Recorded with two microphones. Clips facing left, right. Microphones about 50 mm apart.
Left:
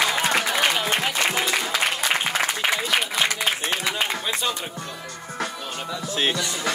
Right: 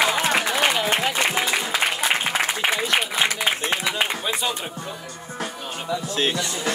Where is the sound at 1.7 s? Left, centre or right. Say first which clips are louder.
Right 1 dB; centre.